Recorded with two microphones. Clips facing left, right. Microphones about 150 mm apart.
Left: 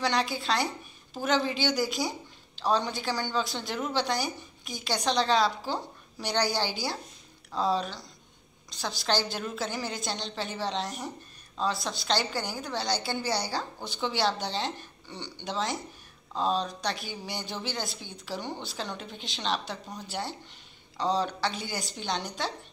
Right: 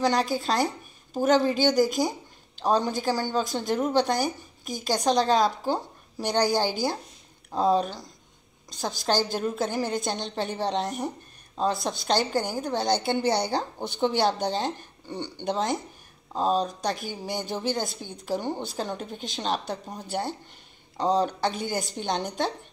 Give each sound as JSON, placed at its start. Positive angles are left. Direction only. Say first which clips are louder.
{"t": 0.0, "sound": "speech", "louder": "right 4 dB", "side_deg": -40}